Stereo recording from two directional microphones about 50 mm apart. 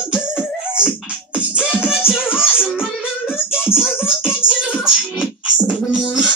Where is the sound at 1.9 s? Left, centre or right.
Centre.